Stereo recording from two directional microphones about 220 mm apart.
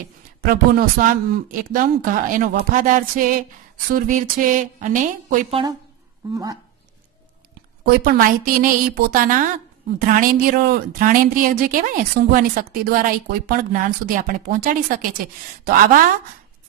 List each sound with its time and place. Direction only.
0.4 s speech: 40° right (ahead or behind)
6.3 s speech: 15° right (ahead or behind)
7.8 s speech: 40° right (ahead or behind)